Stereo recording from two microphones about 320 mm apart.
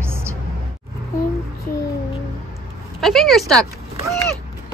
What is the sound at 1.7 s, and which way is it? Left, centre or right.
Music, left.